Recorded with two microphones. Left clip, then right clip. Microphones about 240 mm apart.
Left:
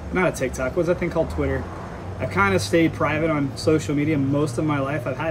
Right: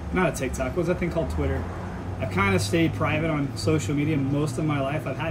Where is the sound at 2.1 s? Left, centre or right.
Centre.